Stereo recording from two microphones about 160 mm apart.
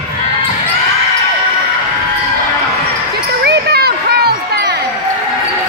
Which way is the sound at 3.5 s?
85° right.